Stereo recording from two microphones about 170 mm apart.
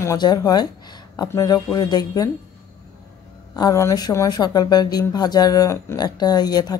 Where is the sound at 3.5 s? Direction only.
20° left (ahead or behind).